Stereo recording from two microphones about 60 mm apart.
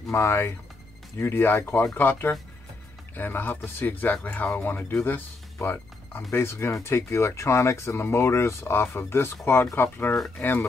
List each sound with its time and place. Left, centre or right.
0.1 s speech: left
6.3 s speech: left
10.1 s speech: centre